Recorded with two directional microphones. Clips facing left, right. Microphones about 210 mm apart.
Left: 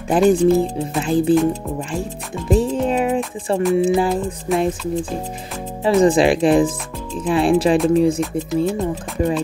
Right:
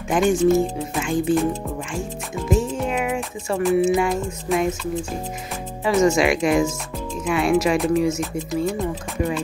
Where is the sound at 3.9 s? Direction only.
30° left (ahead or behind).